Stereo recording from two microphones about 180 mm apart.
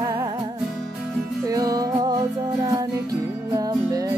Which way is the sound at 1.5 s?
20° right (ahead or behind).